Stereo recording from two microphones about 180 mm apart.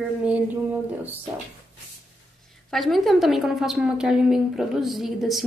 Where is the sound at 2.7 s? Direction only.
Centre (ahead or behind).